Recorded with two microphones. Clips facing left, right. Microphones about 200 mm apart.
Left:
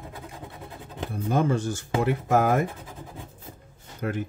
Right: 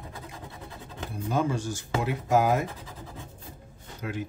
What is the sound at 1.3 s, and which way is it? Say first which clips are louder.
Speech: left 3 dB; 55° left (ahead or behind).